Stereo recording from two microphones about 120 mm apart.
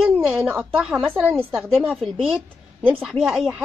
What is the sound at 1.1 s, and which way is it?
Speech, 15° right (ahead or behind).